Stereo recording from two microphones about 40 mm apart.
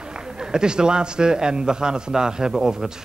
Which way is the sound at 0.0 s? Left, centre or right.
Centre.